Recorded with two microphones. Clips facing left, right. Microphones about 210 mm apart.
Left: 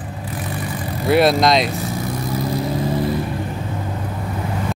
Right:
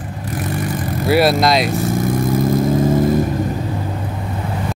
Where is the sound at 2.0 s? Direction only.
50° right (ahead or behind).